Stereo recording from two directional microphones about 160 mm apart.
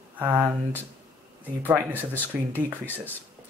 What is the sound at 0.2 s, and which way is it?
Speech, 15° right (ahead or behind).